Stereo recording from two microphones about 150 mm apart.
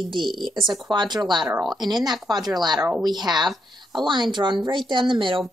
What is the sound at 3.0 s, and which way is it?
Speech, 30° right (ahead or behind).